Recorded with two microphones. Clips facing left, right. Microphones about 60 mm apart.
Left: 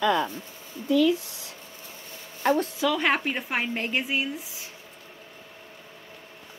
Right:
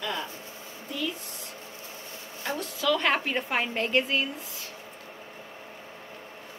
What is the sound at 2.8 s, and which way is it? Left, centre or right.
A woman's voice, centre.